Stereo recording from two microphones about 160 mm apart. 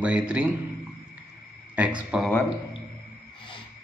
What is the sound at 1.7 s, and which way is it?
Speech, 5° right (ahead or behind).